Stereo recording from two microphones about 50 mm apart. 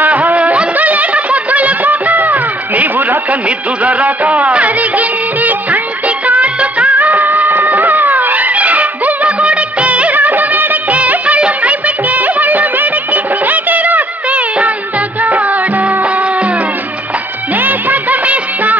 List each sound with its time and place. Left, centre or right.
0.0 s music: right
17.6 s music of bollywood: right